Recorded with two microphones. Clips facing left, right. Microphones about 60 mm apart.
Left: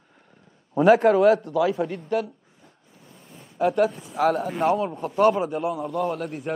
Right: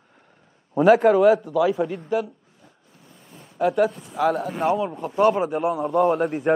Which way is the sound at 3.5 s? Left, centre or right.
Centre.